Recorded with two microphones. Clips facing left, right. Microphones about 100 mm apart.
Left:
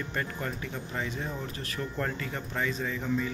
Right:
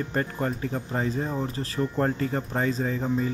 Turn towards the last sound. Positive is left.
turn(degrees=-40)  # may be behind; listen again after turning